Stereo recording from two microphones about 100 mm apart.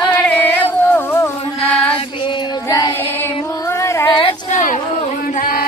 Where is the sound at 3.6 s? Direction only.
30° left (ahead or behind).